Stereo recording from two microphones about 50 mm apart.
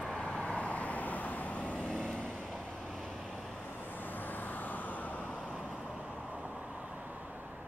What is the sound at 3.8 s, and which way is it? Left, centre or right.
Vehicle, left.